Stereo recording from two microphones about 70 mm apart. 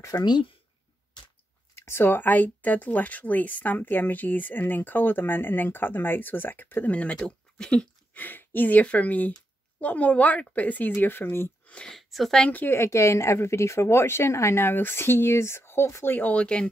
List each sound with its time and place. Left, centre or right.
0.1 s speech: left
1.9 s speech: left; by 8.2 s centre
8.2 s a woman's voice: left
11.6 s a sound: centre
11.9 s speech: centre
12.4 s speech: left
12.7 s a woman's voice: left
16.2 s speech: left